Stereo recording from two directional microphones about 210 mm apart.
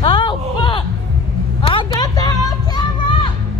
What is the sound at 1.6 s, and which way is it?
Vehicle, 25° left (ahead or behind).